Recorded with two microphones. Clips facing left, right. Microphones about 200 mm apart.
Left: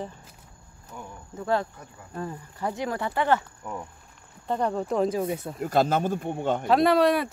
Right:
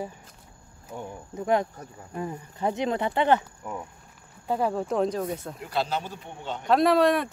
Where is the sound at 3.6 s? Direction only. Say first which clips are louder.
Even; 5° right (ahead or behind).